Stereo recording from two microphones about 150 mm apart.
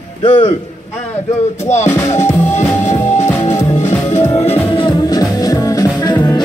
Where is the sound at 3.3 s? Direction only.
20° left (ahead or behind).